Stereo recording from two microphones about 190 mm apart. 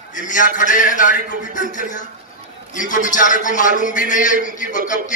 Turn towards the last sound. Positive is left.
turn(degrees=40)  # may be behind; listen again after turning